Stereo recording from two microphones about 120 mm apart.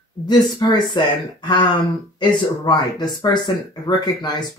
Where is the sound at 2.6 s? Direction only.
35° left (ahead or behind).